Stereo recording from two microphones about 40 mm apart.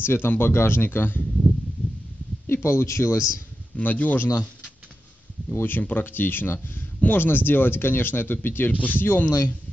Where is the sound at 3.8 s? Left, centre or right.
Left.